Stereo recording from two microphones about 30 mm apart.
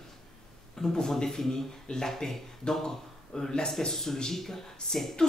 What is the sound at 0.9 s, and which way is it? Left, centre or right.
Speech, left.